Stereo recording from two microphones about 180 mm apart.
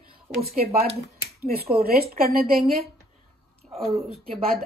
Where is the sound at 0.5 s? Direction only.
55° right (ahead or behind).